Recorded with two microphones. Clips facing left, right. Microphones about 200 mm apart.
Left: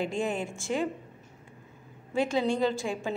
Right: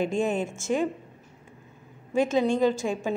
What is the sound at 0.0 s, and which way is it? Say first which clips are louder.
Speech: right 4 dB; 20° right (ahead or behind).